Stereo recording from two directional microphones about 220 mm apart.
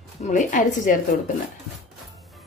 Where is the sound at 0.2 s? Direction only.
35° left (ahead or behind).